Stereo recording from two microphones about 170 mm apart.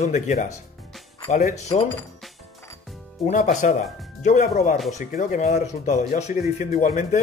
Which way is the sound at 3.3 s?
45° left (ahead or behind).